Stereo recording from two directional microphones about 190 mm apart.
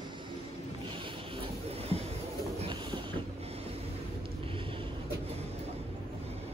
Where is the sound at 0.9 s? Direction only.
25° right (ahead or behind).